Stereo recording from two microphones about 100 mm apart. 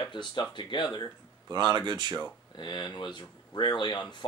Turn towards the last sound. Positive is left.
turn(degrees=45)  # may be behind; listen again after turning